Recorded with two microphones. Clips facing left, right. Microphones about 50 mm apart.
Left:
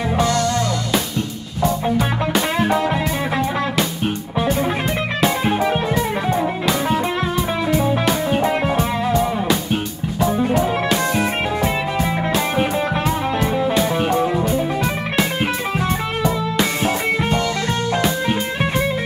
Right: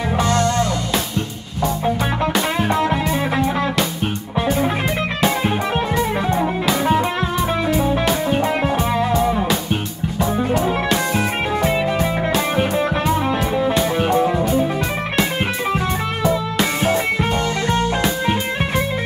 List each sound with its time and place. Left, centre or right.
0.2 s music: right
1.6 s music: centre
5.2 s music: centre
16.9 s music: centre